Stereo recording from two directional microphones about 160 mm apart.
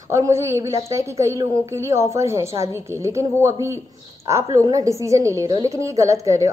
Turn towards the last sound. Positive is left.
turn(degrees=-20)  # may be behind; listen again after turning